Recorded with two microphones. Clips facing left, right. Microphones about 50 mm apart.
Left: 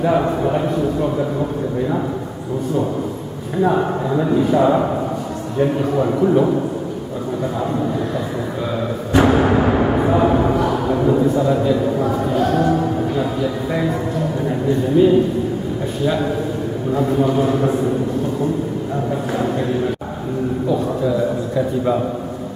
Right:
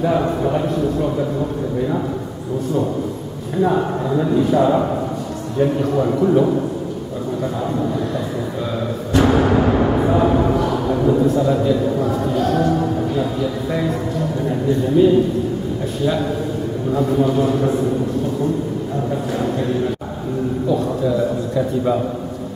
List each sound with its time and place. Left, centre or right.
0.0 s a man's voice: centre
3.6 s a man's voice: centre
9.1 s a sound: centre
15.0 s a man's voice: centre
16.9 s a man's voice: centre
20.6 s a sound: centre